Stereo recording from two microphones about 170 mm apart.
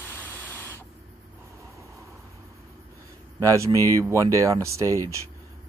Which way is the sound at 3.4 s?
20° right (ahead or behind).